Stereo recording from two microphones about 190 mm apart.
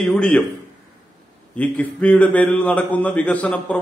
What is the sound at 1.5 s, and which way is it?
A man's voice, 5° left (ahead or behind).